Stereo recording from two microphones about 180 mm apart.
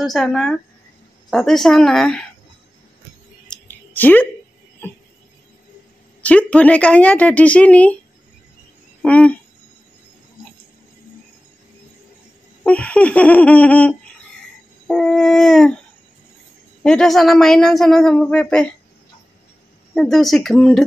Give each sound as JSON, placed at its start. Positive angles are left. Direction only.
{"t": 0.0, "sound": "a woman's voice", "side_deg": 0}
{"t": 3.4, "sound": "a sound", "side_deg": 10}
{"t": 6.2, "sound": "speech", "side_deg": 5}
{"t": 9.0, "sound": "speech", "side_deg": 5}
{"t": 12.6, "sound": "a woman's voice", "side_deg": 5}
{"t": 16.8, "sound": "a woman's voice", "side_deg": 5}
{"t": 19.9, "sound": "a woman's voice", "side_deg": 0}